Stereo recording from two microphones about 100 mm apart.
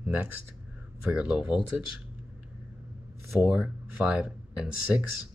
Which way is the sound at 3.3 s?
15° right (ahead or behind).